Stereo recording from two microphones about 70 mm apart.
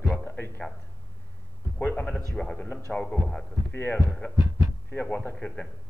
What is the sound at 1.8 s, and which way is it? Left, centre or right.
Speech, left.